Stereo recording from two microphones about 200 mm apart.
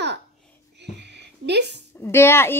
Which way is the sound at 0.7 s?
60° right (ahead or behind).